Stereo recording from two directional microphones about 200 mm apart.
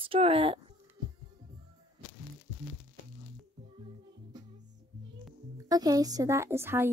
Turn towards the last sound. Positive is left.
turn(degrees=-10)  # may be behind; listen again after turning